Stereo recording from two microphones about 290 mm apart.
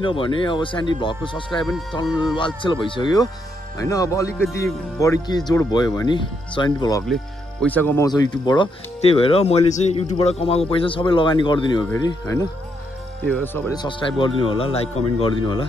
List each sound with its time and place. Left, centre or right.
0.0 s speech: centre